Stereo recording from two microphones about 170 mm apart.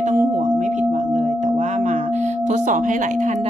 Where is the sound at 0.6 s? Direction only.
45° right (ahead or behind).